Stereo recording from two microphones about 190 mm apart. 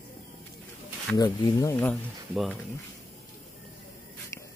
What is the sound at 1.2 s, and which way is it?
Speech, 20° left (ahead or behind).